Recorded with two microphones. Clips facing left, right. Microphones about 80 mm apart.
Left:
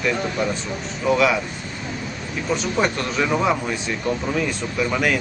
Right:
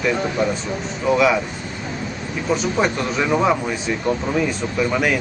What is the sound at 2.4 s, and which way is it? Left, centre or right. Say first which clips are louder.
Speech: right 2 dB; centre.